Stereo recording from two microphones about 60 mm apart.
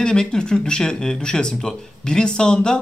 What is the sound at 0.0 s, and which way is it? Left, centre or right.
Speech, centre.